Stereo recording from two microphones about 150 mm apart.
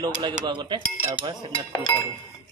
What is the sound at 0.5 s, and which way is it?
Dishes, 30° right (ahead or behind).